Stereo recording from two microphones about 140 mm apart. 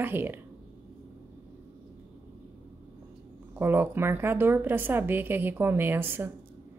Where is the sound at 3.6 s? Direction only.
15° right (ahead or behind).